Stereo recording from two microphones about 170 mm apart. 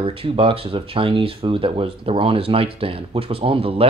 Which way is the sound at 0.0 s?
35° right (ahead or behind).